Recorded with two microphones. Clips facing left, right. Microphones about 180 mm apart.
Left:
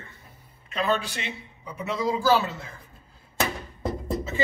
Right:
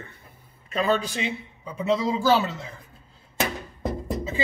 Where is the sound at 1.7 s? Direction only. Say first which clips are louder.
Right 3 dB; 25° right (ahead or behind).